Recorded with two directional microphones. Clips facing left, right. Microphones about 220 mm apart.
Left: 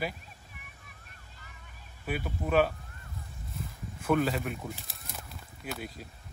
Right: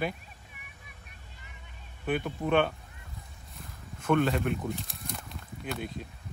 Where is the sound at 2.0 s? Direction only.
5° left (ahead or behind).